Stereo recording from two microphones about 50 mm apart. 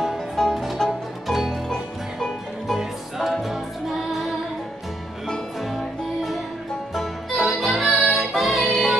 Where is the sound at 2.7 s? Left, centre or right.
Centre.